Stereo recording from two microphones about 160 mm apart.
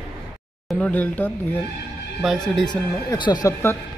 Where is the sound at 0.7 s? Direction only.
5° left (ahead or behind).